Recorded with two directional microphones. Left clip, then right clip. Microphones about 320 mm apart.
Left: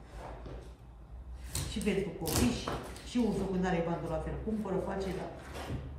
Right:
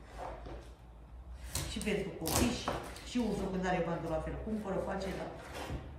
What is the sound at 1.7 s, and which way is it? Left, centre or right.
Speech, centre.